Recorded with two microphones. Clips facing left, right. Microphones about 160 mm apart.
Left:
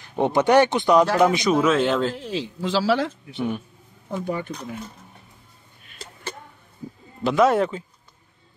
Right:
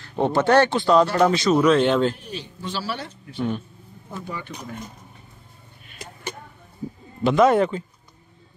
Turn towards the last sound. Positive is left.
turn(degrees=0)  # may be behind; listen again after turning